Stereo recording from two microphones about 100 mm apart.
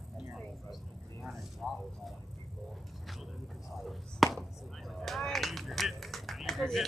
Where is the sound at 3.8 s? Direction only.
Centre (ahead or behind).